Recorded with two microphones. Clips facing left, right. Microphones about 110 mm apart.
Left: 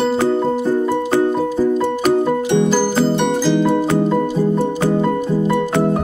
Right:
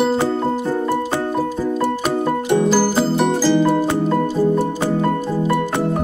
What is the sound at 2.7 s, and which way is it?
Music, 5° right (ahead or behind).